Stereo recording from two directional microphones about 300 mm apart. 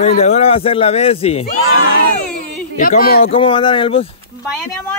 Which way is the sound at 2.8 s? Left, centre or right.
Left.